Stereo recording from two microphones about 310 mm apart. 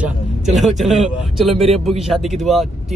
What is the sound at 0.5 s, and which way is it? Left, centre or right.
Speech, centre.